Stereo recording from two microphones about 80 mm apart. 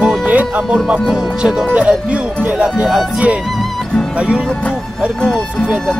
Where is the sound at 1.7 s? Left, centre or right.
Centre.